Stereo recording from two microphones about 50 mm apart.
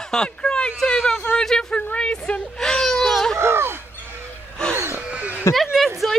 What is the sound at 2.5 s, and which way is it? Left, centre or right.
Speech, centre.